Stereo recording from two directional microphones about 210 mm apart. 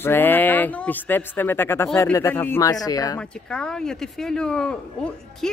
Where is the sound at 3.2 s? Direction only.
5° left (ahead or behind).